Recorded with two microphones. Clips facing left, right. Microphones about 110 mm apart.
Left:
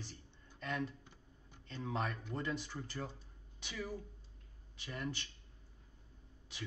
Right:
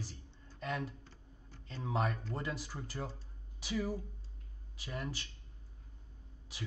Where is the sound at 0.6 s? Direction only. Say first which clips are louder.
Right 1 dB; 5° right (ahead or behind).